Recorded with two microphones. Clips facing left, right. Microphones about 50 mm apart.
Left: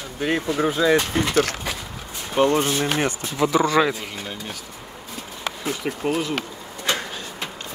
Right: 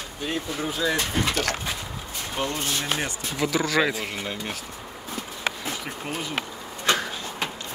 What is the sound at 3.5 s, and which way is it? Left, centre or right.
Speech, left.